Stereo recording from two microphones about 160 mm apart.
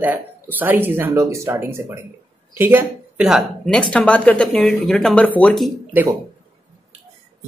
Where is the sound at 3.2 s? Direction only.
Centre (ahead or behind).